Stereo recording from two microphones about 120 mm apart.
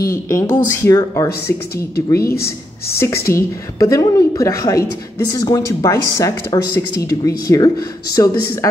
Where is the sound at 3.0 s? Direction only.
25° left (ahead or behind).